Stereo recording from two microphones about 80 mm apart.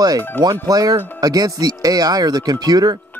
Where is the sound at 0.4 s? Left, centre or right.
Right.